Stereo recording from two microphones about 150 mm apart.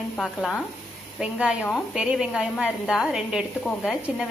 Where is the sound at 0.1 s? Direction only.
5° left (ahead or behind).